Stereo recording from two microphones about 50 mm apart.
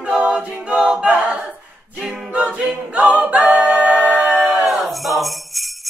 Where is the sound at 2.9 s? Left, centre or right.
Right.